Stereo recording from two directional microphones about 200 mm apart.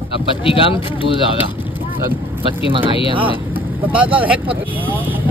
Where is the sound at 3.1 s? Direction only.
25° right (ahead or behind).